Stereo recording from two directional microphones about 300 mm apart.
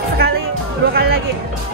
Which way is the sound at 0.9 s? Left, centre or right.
Right.